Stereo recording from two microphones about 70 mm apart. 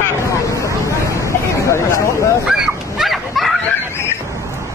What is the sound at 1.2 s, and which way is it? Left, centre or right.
Hubbub, left.